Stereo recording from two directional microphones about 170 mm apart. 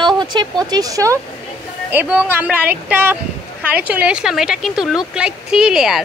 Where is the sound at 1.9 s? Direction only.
10° right (ahead or behind).